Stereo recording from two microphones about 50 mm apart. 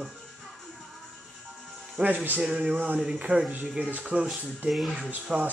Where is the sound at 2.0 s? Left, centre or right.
Centre.